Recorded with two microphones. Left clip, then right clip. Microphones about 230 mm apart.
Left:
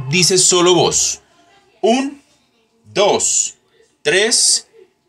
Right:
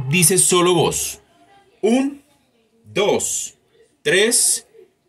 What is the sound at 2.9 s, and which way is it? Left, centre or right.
Speech, centre.